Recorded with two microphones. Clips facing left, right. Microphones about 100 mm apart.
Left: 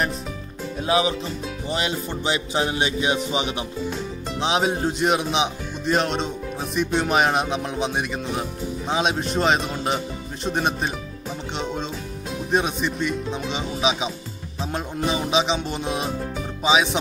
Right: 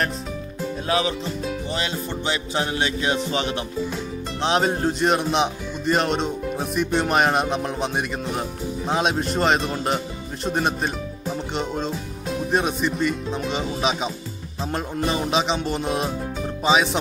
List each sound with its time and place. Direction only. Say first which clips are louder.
0.8 s music: left 3 dB; 15° left (ahead or behind)
4.4 s speech: right 1 dB; 5° left (ahead or behind)